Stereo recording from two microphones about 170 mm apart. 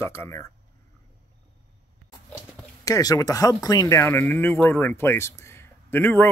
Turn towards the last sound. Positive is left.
turn(degrees=10)  # may be behind; listen again after turning